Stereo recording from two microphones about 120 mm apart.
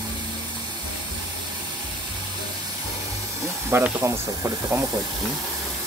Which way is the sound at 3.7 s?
20° right (ahead or behind).